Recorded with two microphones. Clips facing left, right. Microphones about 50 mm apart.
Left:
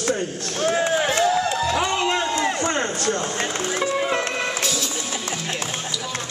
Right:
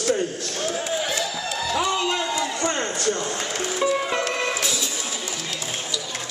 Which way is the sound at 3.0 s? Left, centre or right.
Left.